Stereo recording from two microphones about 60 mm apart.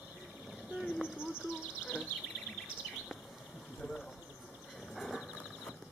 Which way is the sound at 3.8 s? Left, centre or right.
Centre.